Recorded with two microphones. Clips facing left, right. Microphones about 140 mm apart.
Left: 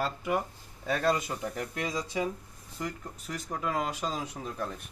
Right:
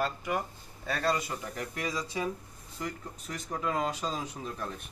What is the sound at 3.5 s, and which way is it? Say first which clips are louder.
Speech: right 1 dB; 5° left (ahead or behind).